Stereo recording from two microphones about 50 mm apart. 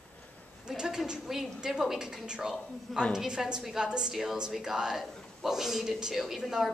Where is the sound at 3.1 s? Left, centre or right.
Centre.